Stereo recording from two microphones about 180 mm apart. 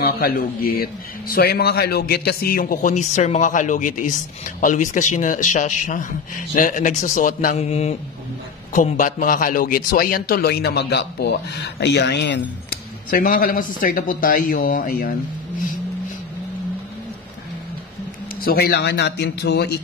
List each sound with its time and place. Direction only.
0.0 s a man's voice: 55° left (ahead or behind)
7.5 s mantra: 35° left (ahead or behind)
8.7 s a man's voice: 45° left (ahead or behind)
18.4 s a man's voice: 60° left (ahead or behind)